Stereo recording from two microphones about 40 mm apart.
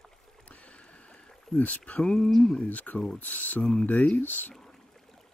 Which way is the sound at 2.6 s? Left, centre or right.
Left.